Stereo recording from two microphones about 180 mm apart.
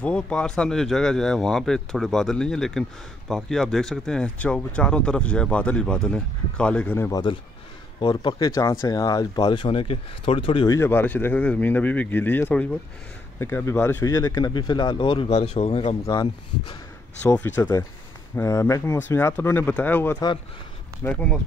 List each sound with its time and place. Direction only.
0.0 s speech: 5° left (ahead or behind)
8.0 s speech: 25° left (ahead or behind)
10.8 s speech: 10° left (ahead or behind); by 16.0 s 35° left (ahead or behind)
16.1 s speech: 25° left (ahead or behind)
17.2 s speech: 10° left (ahead or behind)
17.6 s speech: 20° left (ahead or behind)